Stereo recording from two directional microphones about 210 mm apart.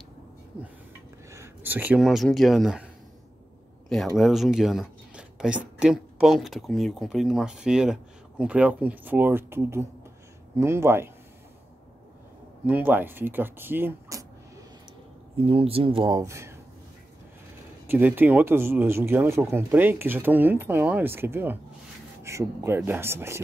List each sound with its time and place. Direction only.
0.5 s speech: 5° right (ahead or behind)
4.2 s speech: centre (ahead or behind)
12.6 s speech: 10° right (ahead or behind)
15.3 s speech: 25° right (ahead or behind)
17.8 s speech: 10° right (ahead or behind)